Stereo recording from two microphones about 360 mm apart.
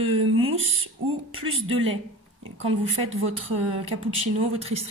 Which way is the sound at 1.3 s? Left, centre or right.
Right.